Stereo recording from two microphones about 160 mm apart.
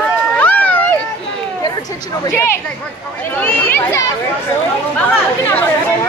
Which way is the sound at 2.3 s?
15° left (ahead or behind).